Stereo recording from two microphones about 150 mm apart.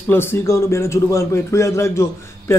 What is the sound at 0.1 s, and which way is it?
A man's voice, 15° left (ahead or behind).